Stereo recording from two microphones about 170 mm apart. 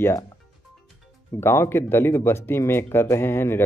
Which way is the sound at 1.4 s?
15° left (ahead or behind).